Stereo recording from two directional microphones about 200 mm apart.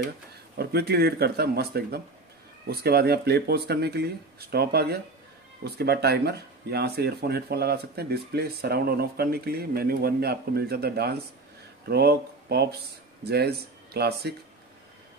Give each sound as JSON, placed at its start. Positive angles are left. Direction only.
{"t": 0.6, "sound": "speech", "side_deg": -55}